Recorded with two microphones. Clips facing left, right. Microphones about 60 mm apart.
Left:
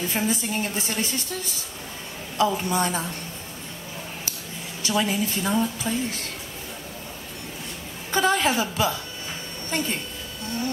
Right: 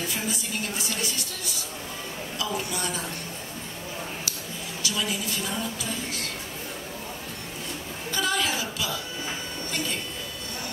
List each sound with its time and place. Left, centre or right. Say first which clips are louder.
0.1 s a woman's voice: left 5 dB; left
2.3 s a woman's voice: left 9 dB; left
4.8 s a woman's voice: left 6 dB; left
8.1 s a woman's voice: left 6 dB; left